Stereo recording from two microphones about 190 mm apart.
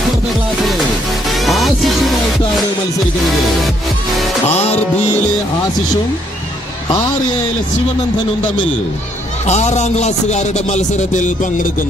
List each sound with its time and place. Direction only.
1.3 s music: centre (ahead or behind)
9.5 s speech: 35° left (ahead or behind)